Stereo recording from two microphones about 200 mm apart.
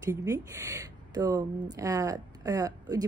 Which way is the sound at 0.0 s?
15° right (ahead or behind).